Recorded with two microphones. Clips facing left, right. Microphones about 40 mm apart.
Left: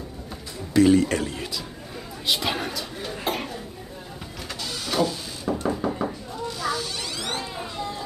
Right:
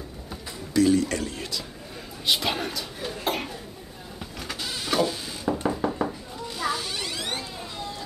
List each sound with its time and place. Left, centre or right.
0.7 s speech: left
1.3 s speech: centre
4.6 s sheep: centre
6.6 s a sound: centre